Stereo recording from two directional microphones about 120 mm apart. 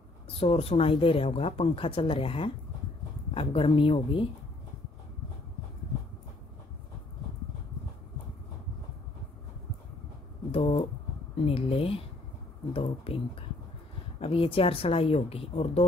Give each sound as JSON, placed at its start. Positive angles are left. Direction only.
{"t": 0.4, "sound": "speech", "side_deg": 55}
{"t": 10.5, "sound": "a sound", "side_deg": 60}
{"t": 11.4, "sound": "speech", "side_deg": 55}
{"t": 13.0, "sound": "speech", "side_deg": 50}